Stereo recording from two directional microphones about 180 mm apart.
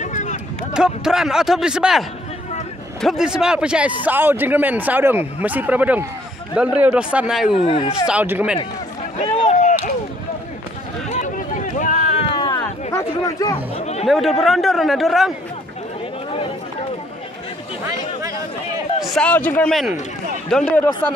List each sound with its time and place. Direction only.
0.0 s a sound: 40° left (ahead or behind)
0.7 s a man's voice: 5° right (ahead or behind)
7.5 s speech: 30° left (ahead or behind)
8.1 s a man's voice: 10° right (ahead or behind)
9.4 s chop: 40° left (ahead or behind)
11.1 s a sound: 40° left (ahead or behind)
12.3 s a sound: 25° left (ahead or behind)
13.7 s chatter: 35° left (ahead or behind)
14.0 s a man's voice: centre (ahead or behind)
19.0 s a man's voice: 5° left (ahead or behind)